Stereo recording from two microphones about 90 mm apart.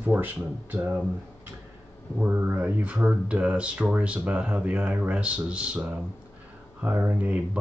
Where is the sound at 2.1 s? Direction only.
15° right (ahead or behind).